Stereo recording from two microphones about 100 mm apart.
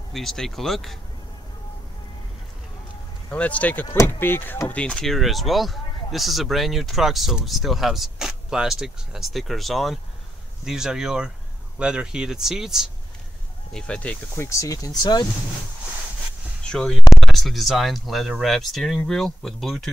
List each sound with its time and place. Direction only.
0.1 s speech: centre (ahead or behind)
3.3 s speech: 15° left (ahead or behind)
3.8 s speech: 30° left (ahead or behind); by 12.9 s 5° right (ahead or behind)
13.7 s speech: 10° left (ahead or behind)
14.3 s speech: 30° left (ahead or behind)
16.6 s speech: 5° left (ahead or behind)